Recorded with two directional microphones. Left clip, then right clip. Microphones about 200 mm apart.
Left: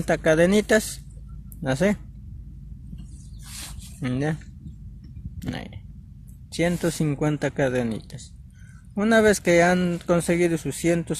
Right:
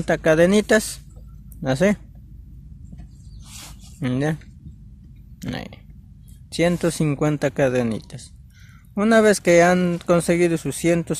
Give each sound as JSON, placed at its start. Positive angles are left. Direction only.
{"t": 0.0, "sound": "speech", "side_deg": -20}
{"t": 4.0, "sound": "speech", "side_deg": -25}
{"t": 5.4, "sound": "speech", "side_deg": -25}